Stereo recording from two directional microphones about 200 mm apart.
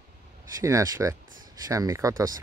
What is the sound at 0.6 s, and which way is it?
Speech, 15° right (ahead or behind).